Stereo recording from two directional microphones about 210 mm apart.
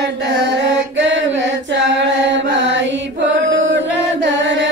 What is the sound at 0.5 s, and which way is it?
Mantra, 60° right (ahead or behind).